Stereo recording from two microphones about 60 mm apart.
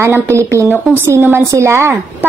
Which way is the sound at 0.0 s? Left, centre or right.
Right.